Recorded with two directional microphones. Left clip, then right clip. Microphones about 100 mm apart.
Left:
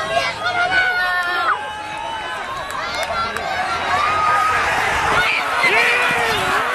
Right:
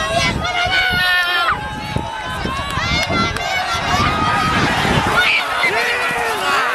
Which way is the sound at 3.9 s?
5° right (ahead or behind).